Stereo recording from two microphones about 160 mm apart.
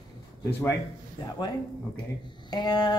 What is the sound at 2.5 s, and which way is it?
Speech, 25° left (ahead or behind).